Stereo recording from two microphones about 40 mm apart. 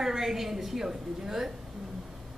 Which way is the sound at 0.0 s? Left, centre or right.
Centre.